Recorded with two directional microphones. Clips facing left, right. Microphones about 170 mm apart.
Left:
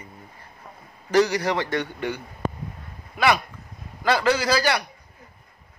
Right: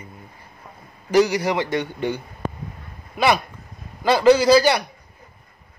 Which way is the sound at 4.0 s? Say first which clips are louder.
Right 7 dB; 20° right (ahead or behind).